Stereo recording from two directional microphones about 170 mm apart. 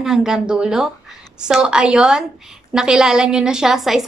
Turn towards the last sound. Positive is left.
turn(degrees=0)  # may be behind; listen again after turning